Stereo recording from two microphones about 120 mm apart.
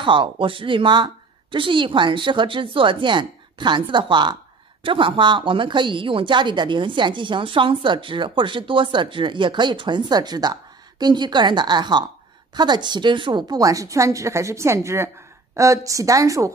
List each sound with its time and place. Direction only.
0.0 s a woman's voice: 45° right (ahead or behind); by 16.5 s 25° right (ahead or behind)